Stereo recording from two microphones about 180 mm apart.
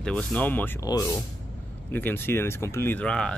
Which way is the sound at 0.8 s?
20° left (ahead or behind).